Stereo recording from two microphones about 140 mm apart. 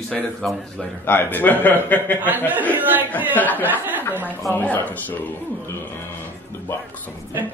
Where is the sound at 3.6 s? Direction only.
15° right (ahead or behind).